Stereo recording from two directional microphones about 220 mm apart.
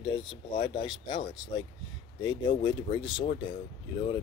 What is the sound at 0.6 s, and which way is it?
Speech, 20° left (ahead or behind).